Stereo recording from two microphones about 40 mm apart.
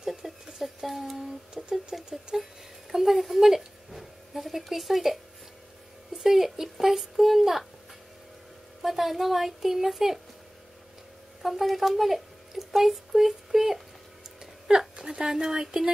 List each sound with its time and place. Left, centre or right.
0.0 s a sound: centre
1.2 s humming: centre
2.3 s a child's voice: centre
8.8 s a woman's voice: centre
11.4 s speech: centre
14.4 s speech: centre